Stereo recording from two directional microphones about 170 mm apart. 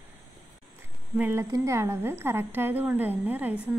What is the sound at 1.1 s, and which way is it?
A woman's voice, 10° right (ahead or behind).